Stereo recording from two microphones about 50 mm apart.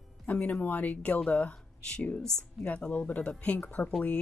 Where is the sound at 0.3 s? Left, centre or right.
Left.